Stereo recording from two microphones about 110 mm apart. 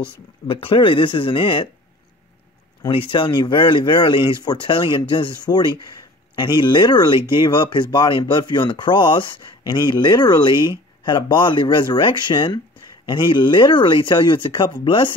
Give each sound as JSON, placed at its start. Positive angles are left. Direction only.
{"t": 0.5, "sound": "speech", "side_deg": 55}
{"t": 2.9, "sound": "speech", "side_deg": 50}